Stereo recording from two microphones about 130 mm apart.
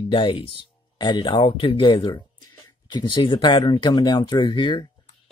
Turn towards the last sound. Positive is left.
turn(degrees=35)  # may be behind; listen again after turning